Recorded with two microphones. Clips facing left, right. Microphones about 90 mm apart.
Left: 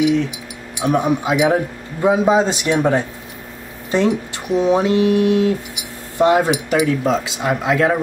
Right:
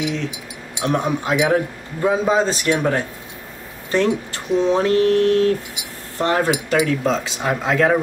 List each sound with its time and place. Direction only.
0.7 s a man's voice: 10° left (ahead or behind)